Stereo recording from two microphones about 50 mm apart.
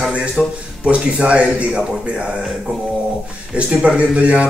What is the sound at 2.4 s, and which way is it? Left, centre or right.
Speech, centre.